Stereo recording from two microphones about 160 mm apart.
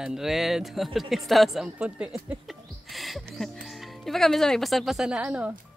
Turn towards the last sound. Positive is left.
turn(degrees=-5)  # may be behind; listen again after turning